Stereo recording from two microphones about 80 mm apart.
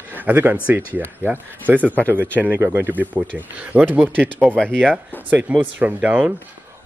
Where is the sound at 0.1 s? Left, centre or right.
Right.